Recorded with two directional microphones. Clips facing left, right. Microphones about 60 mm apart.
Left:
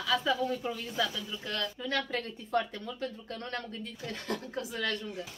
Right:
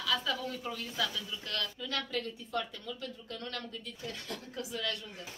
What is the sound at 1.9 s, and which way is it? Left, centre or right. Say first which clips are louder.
Speech: left 5 dB; left.